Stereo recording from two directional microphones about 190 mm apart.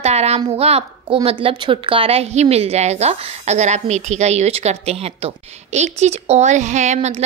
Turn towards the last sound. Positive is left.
turn(degrees=-35)  # may be behind; listen again after turning